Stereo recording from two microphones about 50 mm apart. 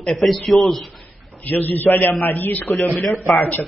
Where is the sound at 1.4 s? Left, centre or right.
Left.